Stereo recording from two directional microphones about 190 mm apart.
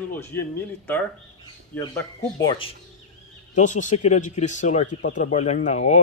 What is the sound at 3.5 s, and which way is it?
A man's voice, 40° left (ahead or behind).